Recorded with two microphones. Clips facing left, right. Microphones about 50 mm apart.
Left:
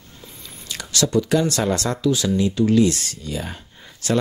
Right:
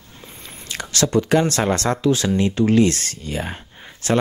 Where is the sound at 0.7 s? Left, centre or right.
Right.